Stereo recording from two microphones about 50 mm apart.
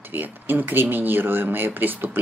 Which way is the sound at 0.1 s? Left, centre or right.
Right.